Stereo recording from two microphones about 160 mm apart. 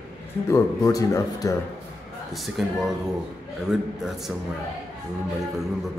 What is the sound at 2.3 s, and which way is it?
Speech, centre (ahead or behind).